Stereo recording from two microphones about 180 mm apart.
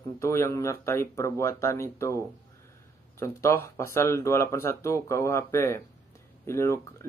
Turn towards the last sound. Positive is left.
turn(degrees=15)  # may be behind; listen again after turning